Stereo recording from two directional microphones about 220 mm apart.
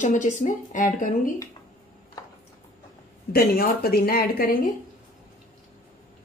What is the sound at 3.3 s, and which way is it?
Speech, 40° left (ahead or behind).